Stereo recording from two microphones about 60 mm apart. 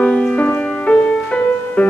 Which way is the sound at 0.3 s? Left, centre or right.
Left.